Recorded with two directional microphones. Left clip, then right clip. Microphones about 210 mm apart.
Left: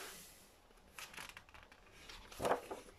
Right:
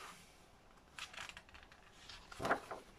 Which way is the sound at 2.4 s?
10° left (ahead or behind).